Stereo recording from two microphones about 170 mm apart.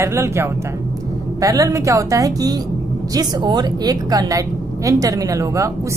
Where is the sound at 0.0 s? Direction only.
15° right (ahead or behind).